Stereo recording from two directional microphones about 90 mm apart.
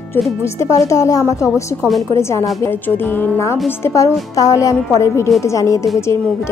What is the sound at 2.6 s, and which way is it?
A woman's voice, 25° left (ahead or behind).